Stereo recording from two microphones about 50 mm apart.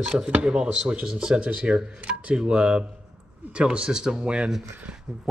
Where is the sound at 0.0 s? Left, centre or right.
Centre.